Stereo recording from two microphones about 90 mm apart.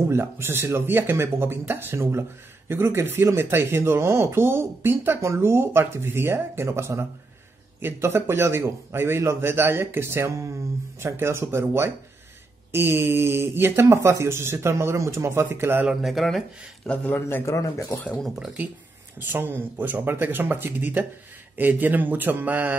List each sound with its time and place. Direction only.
0.1 s speech: 25° right (ahead or behind)
15.9 s speech: centre (ahead or behind)
16.8 s a man's voice: 15° left (ahead or behind)
17.5 s speech: 35° left (ahead or behind)
18.1 s speech: 5° right (ahead or behind)
19.1 s speech: 20° right (ahead or behind)